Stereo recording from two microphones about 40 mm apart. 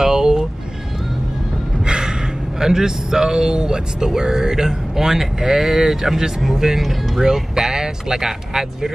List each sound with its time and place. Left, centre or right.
0.0 s vehicle: centre
1.9 s gasp: right
2.6 s speech: centre